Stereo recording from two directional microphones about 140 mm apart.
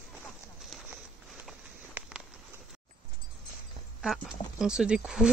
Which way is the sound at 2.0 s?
15° right (ahead or behind).